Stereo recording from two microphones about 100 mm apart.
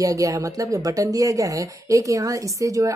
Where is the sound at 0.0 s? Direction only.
35° right (ahead or behind).